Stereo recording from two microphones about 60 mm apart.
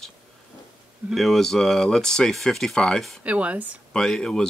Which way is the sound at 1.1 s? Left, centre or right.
Centre.